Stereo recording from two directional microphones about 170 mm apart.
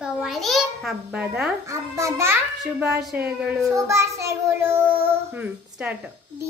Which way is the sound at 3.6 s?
15° right (ahead or behind).